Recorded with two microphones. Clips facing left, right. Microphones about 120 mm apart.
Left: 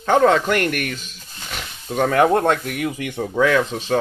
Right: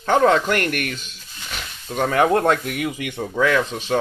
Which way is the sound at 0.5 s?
5° left (ahead or behind).